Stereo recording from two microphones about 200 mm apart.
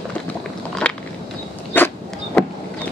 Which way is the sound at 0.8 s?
5° left (ahead or behind).